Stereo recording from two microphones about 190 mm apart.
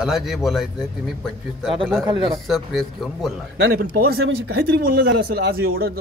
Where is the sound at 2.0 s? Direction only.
25° right (ahead or behind).